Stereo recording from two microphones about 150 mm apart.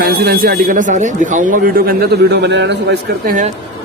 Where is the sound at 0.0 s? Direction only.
90° right.